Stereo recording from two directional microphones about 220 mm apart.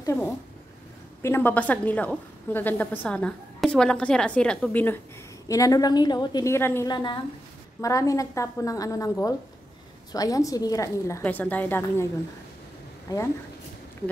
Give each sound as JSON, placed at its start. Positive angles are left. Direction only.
{"t": 0.0, "sound": "a woman's voice", "side_deg": 10}